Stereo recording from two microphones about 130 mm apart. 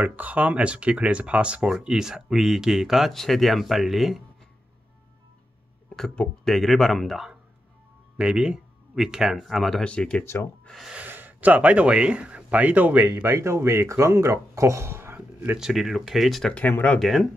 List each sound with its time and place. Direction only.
0.0 s speech: 10° right (ahead or behind)
5.9 s speech: 5° left (ahead or behind)
10.7 s speech: 5° right (ahead or behind); by 17.0 s 10° left (ahead or behind)
17.0 s speech: centre (ahead or behind)